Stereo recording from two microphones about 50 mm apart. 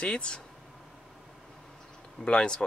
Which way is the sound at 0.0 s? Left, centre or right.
Left.